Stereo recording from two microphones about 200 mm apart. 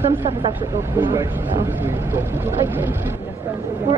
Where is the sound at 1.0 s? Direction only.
15° right (ahead or behind).